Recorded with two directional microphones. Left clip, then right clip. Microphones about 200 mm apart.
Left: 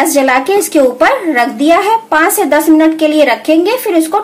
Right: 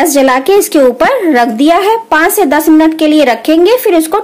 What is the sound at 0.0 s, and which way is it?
A woman's voice, 45° right (ahead or behind).